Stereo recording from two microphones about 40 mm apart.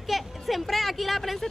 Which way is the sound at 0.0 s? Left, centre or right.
Centre.